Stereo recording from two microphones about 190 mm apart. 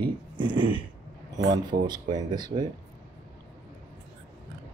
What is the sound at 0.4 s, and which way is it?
Speech, 25° right (ahead or behind).